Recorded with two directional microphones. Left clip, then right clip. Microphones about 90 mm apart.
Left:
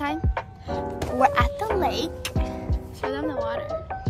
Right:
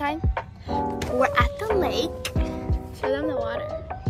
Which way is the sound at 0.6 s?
45° left (ahead or behind).